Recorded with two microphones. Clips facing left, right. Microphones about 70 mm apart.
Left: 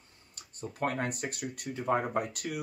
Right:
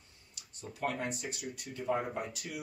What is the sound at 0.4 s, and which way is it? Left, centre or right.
Speech, left.